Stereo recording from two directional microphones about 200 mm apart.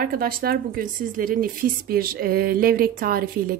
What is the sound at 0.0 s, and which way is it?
A woman's voice, 45° right (ahead or behind).